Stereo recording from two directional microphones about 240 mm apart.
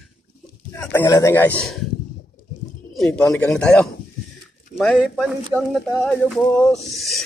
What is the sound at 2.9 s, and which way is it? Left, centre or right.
Speech, centre.